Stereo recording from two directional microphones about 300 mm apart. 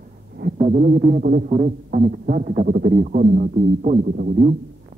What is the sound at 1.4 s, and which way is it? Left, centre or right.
Speech, right.